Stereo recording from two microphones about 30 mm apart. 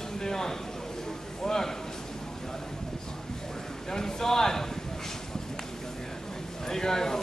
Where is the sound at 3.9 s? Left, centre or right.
Centre.